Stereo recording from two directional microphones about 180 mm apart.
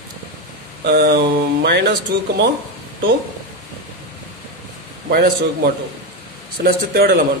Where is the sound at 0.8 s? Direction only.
65° right (ahead or behind).